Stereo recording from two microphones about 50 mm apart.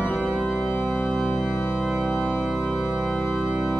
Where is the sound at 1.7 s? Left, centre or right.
Centre.